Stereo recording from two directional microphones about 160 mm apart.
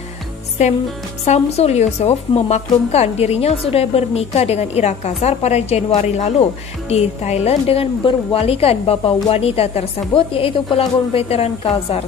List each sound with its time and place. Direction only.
1.2 s a woman's voice: 45° left (ahead or behind)